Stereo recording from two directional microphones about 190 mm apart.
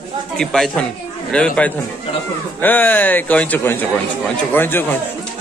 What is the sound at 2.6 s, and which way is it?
A man's voice, 10° left (ahead or behind).